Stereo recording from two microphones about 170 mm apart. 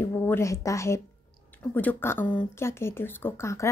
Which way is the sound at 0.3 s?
15° left (ahead or behind).